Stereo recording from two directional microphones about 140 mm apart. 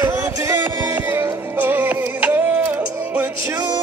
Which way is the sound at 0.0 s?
25° right (ahead or behind).